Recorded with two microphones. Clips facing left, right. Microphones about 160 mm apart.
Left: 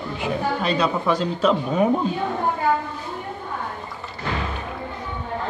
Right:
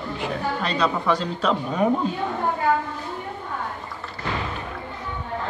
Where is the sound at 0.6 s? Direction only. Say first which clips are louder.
Even; 5° left (ahead or behind).